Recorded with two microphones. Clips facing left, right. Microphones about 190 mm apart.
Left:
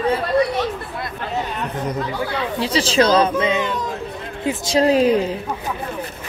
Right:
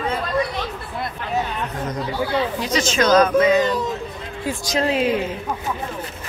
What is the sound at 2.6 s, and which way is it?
Speech, 30° left (ahead or behind).